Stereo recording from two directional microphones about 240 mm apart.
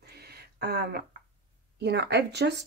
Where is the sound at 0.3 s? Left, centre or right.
Right.